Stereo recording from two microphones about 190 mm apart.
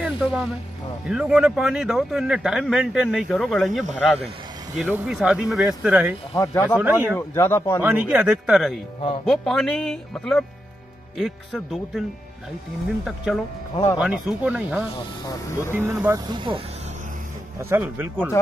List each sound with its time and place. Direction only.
0.0 s vehicle: 5° right (ahead or behind)
1.0 s speech: 5° right (ahead or behind)
6.3 s speech: 15° left (ahead or behind)
6.8 s speech: 10° right (ahead or behind)
7.2 s speech: 15° left (ahead or behind)
7.8 s speech: 10° right (ahead or behind)
13.0 s speech: centre (ahead or behind)
15.0 s speech: 20° left (ahead or behind)
15.7 s speech: 10° right (ahead or behind)
16.3 s speech: 25° right (ahead or behind)
17.6 s speech: 10° right (ahead or behind)